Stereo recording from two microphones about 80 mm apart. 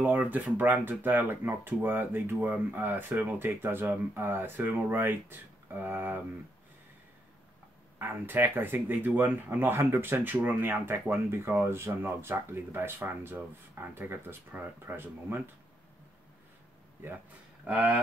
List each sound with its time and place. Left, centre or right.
0.0 s speech: right
8.0 s speech: right